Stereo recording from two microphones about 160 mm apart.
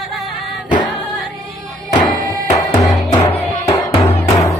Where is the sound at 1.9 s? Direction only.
30° left (ahead or behind).